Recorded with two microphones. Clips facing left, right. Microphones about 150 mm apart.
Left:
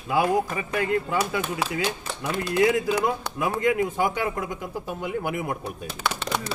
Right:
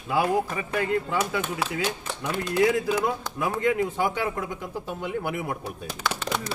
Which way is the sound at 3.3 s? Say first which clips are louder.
Left 2 dB; 65° left (ahead or behind).